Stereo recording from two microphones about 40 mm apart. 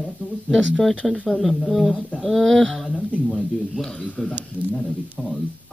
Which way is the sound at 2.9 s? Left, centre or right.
Left.